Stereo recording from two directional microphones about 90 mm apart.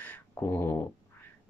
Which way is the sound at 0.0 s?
25° left (ahead or behind).